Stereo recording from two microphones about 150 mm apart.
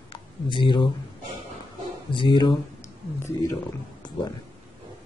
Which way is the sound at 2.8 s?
20° left (ahead or behind).